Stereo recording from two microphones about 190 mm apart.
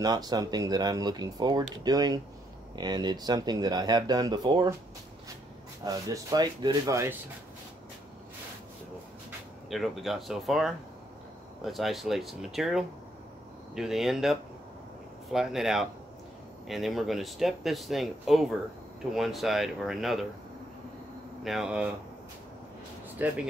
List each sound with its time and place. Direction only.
0.0 s speech: 20° right (ahead or behind)
5.9 s speech: 20° right (ahead or behind)
9.7 s speech: centre (ahead or behind)
21.5 s speech: 5° right (ahead or behind)
23.2 s speech: 10° right (ahead or behind)